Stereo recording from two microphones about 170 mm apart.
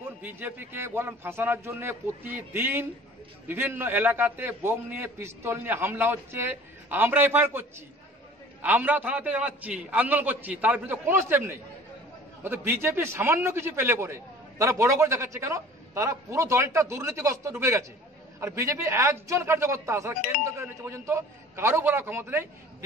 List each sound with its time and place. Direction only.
0.2 s a man's voice: 10° right (ahead or behind)
8.6 s a man's voice: 10° right (ahead or behind)